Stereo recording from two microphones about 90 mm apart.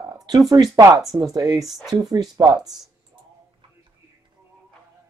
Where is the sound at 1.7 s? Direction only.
Centre (ahead or behind).